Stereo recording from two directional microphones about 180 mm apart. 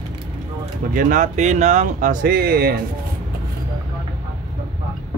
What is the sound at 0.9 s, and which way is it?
Speech, 50° right (ahead or behind).